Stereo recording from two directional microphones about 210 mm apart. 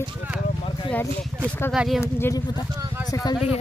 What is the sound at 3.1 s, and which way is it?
Speech, 15° left (ahead or behind).